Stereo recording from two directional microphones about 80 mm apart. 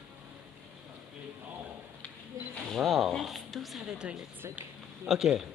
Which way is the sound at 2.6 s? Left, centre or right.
Centre.